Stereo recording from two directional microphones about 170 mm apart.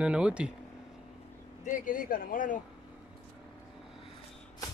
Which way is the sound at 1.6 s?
50° left (ahead or behind).